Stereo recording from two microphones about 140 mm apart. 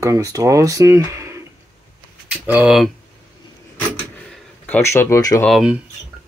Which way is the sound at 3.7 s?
10° left (ahead or behind).